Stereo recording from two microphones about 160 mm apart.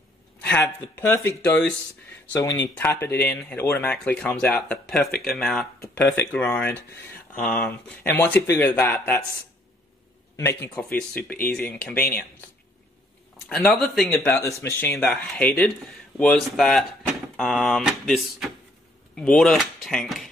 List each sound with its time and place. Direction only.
0.4 s speech: 10° left (ahead or behind)
2.7 s speech: 15° left (ahead or behind)
5.8 s speech: 10° left (ahead or behind)
10.3 s speech: 15° left (ahead or behind)
13.5 s speech: 5° left (ahead or behind)
14.0 s speech: 15° left (ahead or behind)